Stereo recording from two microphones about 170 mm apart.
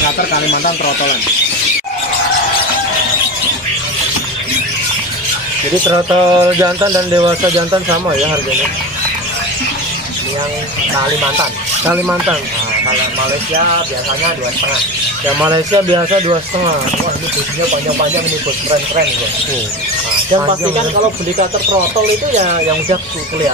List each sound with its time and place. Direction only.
5.9 s bird: 20° right (ahead or behind)
11.8 s speech: 10° right (ahead or behind)
15.5 s bird: 30° right (ahead or behind)
22.4 s speech: 40° right (ahead or behind)